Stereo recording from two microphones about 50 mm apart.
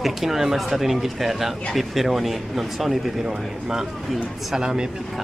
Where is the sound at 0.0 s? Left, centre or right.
Centre.